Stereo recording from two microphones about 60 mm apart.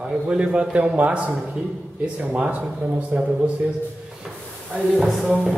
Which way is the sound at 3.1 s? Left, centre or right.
Right.